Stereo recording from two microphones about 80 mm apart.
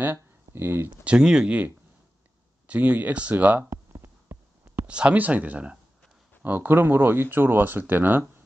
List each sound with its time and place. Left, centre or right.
0.0 s speech: right
1.0 s speech: centre
3.9 s a sound: right
4.7 s speech: centre